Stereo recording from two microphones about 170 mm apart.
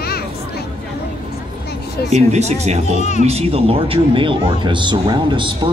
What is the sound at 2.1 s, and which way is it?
Speech, 40° right (ahead or behind).